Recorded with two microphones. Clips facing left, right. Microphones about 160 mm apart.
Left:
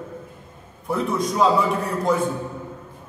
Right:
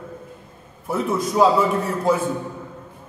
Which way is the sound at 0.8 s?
5° right (ahead or behind).